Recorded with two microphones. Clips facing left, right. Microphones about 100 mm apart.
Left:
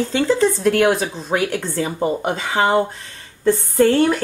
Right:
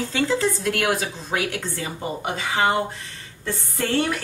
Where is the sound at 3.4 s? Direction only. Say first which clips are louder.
Left 12 dB; 40° left (ahead or behind).